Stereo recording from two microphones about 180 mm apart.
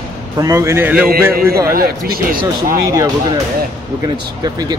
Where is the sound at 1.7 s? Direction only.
55° right (ahead or behind).